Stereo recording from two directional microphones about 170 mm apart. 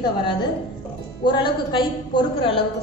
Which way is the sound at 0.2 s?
25° left (ahead or behind).